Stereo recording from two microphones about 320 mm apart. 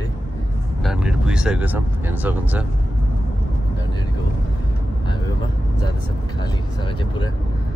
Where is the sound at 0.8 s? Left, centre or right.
Centre.